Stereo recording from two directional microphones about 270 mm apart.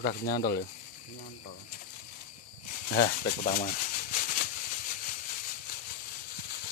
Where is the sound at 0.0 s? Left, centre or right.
Left.